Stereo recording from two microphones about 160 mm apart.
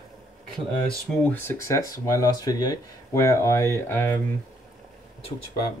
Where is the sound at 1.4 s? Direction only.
20° left (ahead or behind).